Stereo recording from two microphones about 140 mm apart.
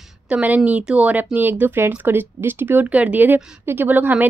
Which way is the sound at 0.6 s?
5° right (ahead or behind).